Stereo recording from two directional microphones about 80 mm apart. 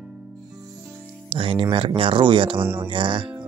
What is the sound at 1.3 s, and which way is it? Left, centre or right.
Speech, right.